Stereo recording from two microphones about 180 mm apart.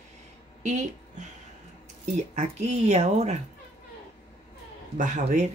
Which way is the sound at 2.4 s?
40° right (ahead or behind).